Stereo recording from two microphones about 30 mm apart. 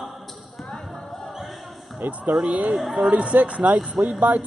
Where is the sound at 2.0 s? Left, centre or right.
Right.